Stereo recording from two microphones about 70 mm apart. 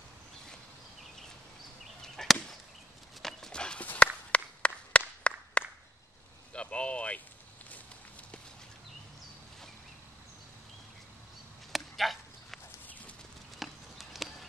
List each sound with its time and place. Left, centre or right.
2.0 s chop: centre
3.2 s clip-clop: centre
4.3 s a sound: centre
6.5 s vehicle: centre
11.7 s dog: centre
13.6 s a sound: centre